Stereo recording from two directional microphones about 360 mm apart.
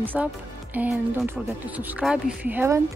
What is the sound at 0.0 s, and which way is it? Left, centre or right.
A woman's voice, centre.